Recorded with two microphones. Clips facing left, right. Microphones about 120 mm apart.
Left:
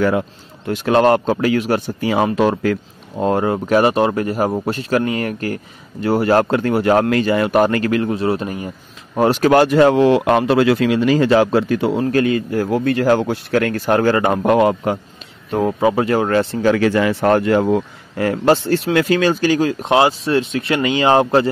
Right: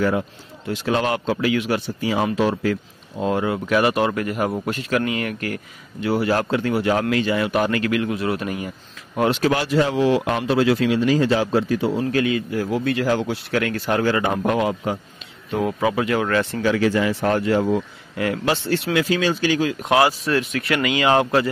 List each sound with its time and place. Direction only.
0.7 s speech: 55° left (ahead or behind)
12.0 s speech: 45° left (ahead or behind)
15.5 s speech: 35° left (ahead or behind)
16.6 s speech: 60° left (ahead or behind)
18.1 s speech: 40° left (ahead or behind)
18.9 s speech: 55° left (ahead or behind)
19.9 s speech: 25° left (ahead or behind)